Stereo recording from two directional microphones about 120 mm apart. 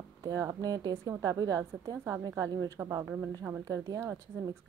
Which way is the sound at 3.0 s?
15° right (ahead or behind).